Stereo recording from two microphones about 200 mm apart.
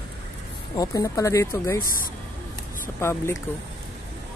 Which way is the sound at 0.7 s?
15° left (ahead or behind).